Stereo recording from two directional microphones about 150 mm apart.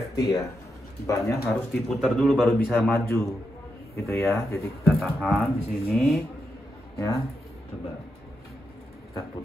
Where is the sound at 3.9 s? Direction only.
20° left (ahead or behind).